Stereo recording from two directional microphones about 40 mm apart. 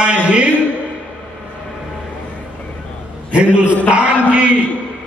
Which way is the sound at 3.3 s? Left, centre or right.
Right.